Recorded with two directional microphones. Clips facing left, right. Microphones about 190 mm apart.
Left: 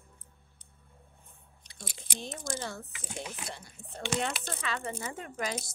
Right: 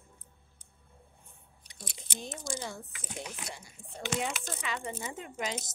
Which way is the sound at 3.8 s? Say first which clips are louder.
Left 2 dB; 5° left (ahead or behind).